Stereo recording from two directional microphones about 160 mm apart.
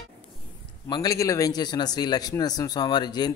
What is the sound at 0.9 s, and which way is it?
A man's voice, 25° left (ahead or behind).